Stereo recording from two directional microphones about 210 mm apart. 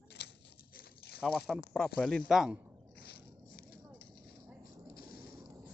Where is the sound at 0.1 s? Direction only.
50° left (ahead or behind).